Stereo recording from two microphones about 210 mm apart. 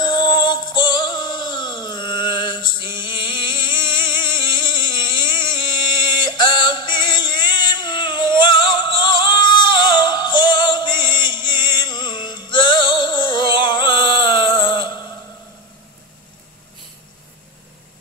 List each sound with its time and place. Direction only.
0.0 s music: 20° left (ahead or behind)